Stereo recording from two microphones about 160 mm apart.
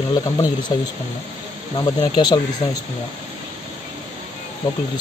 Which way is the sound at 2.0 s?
25° left (ahead or behind).